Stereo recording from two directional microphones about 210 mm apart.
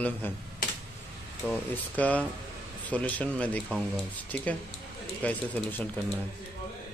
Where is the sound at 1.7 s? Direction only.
5° left (ahead or behind).